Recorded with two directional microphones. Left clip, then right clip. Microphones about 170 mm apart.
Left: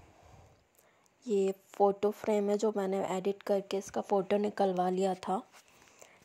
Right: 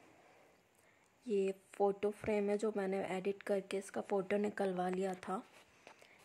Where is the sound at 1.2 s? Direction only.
10° left (ahead or behind).